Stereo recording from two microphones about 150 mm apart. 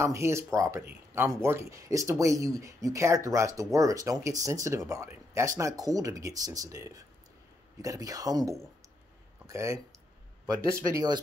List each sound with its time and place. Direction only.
0.0 s speech: 20° right (ahead or behind)